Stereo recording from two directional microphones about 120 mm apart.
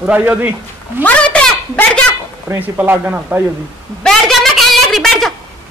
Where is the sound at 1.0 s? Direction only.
10° left (ahead or behind).